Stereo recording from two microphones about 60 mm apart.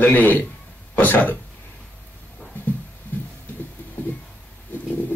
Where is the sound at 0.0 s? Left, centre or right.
Left.